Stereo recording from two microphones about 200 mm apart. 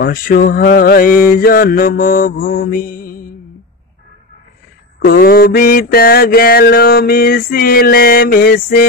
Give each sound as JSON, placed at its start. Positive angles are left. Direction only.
{"t": 0.0, "sound": "mantra", "side_deg": 45}
{"t": 5.0, "sound": "mantra", "side_deg": 50}